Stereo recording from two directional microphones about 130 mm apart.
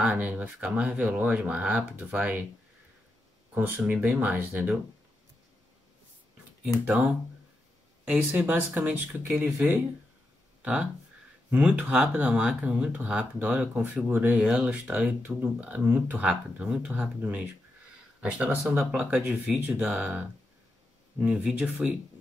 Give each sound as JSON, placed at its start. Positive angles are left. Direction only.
{"t": 0.0, "sound": "speech", "side_deg": -10}
{"t": 3.5, "sound": "speech", "side_deg": -15}
{"t": 6.8, "sound": "speech", "side_deg": -15}